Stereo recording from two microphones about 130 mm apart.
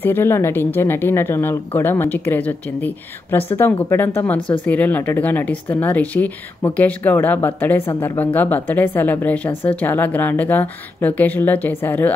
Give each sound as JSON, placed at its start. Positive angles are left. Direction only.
{"t": 0.0, "sound": "speech", "side_deg": 20}